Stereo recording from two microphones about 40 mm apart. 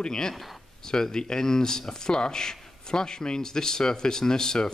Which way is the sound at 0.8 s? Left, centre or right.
Centre.